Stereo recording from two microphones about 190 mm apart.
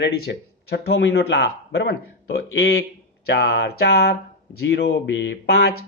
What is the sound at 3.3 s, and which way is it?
Speech, 55° left (ahead or behind).